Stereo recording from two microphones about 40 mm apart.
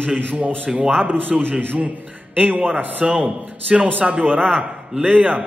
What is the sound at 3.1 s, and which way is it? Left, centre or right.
A man's voice, right.